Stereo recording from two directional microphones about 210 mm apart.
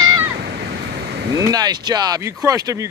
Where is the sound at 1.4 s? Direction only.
20° right (ahead or behind).